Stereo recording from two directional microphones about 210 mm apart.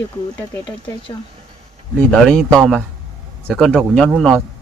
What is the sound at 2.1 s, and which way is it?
A man's voice, 5° left (ahead or behind).